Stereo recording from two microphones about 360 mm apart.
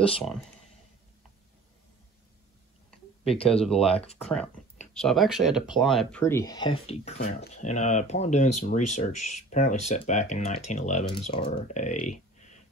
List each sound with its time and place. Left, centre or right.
3.3 s speech: centre
4.9 s speech: centre